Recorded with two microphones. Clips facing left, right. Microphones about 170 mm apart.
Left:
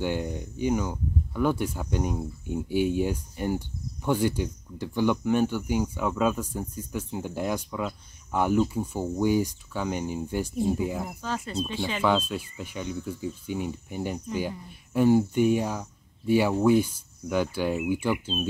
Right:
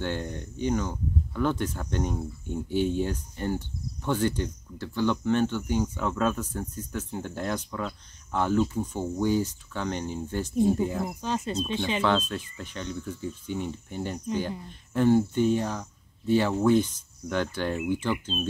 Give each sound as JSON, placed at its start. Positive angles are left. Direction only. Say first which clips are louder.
{"t": 0.0, "sound": "speech", "louder": "left 3 dB", "side_deg": 10}
{"t": 11.1, "sound": "speech", "louder": "right 3 dB", "side_deg": -20}
{"t": 12.0, "sound": "speech", "louder": "left 4 dB", "side_deg": 10}